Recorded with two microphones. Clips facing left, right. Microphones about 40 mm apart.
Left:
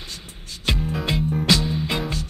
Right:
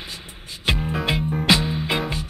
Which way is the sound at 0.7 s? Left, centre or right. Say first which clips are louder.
Right 2 dB; centre.